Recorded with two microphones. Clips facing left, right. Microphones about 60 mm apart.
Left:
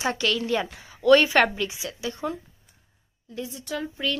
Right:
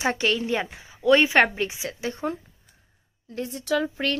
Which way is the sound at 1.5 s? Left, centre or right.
Right.